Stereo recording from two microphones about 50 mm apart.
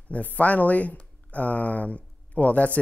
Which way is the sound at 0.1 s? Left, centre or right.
Left.